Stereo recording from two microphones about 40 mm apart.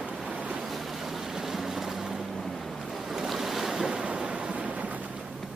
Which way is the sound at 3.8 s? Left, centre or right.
Right.